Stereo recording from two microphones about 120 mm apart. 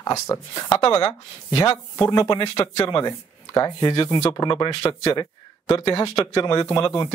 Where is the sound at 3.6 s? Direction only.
40° left (ahead or behind).